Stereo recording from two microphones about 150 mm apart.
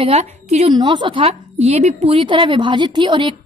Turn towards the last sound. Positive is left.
turn(degrees=-35)  # may be behind; listen again after turning